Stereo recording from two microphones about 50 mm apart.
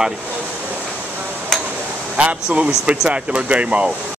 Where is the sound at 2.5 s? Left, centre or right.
Right.